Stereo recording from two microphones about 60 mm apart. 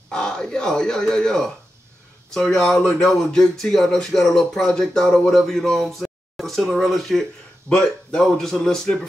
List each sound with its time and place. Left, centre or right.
0.1 s speech: centre